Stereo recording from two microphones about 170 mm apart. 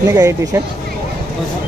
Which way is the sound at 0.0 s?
20° right (ahead or behind).